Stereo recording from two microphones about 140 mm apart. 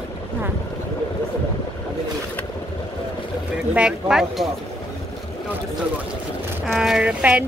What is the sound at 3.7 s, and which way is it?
Speech, 5° right (ahead or behind).